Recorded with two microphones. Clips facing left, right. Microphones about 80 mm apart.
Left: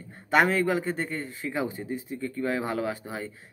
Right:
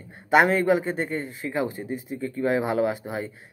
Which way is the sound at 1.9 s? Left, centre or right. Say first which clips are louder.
Right 2 dB; centre.